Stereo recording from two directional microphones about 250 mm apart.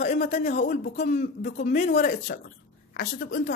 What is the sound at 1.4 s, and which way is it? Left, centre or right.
Speech, left.